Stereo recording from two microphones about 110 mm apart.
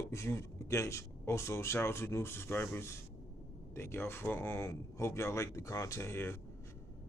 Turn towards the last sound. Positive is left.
turn(degrees=20)  # may be behind; listen again after turning